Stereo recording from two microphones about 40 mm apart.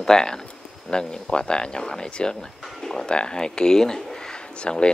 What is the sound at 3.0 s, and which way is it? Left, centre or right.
Speech, left.